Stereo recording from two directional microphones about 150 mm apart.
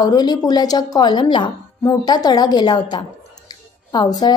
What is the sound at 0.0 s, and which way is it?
A woman's voice, 25° left (ahead or behind).